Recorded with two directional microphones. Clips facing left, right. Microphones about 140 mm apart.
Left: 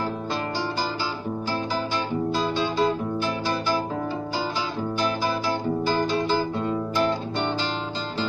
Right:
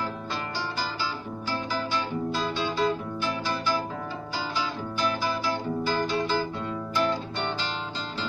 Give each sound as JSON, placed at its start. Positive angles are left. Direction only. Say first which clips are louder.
{"t": 2.3, "sound": "music", "louder": "left 4 dB", "side_deg": 30}
{"t": 5.0, "sound": "music", "louder": "left 1 dB", "side_deg": 35}